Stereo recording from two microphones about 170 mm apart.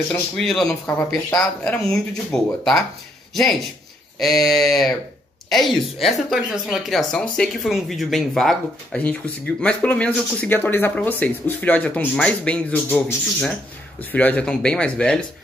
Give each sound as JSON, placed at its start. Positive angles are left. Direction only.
{"t": 0.1, "sound": "speech", "side_deg": 0}
{"t": 0.7, "sound": "speech", "side_deg": 15}
{"t": 1.9, "sound": "speech", "side_deg": 0}
{"t": 4.2, "sound": "speech", "side_deg": 0}